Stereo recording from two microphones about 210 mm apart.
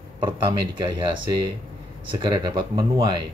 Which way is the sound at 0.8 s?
25° right (ahead or behind).